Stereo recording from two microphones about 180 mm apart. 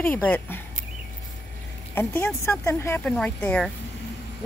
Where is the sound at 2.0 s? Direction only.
10° left (ahead or behind).